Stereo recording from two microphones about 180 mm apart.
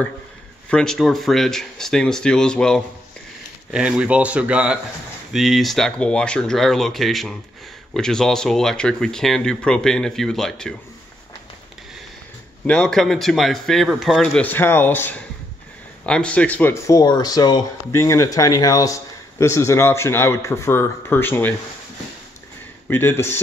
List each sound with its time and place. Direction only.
0.7 s speech: 5° left (ahead or behind)
12.6 s speech: 5° left (ahead or behind)
22.8 s speech: 15° left (ahead or behind)